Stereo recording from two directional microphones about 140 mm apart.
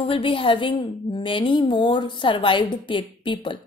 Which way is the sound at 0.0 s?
40° left (ahead or behind).